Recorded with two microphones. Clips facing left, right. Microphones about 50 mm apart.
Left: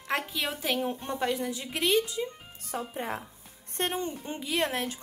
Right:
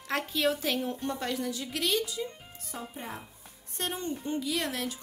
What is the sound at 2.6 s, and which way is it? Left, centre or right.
Music, left.